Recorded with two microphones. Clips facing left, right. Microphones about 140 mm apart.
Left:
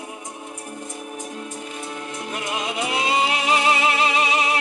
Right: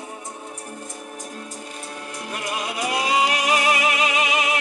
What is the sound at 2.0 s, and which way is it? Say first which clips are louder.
Music: right 1 dB; 20° left (ahead or behind).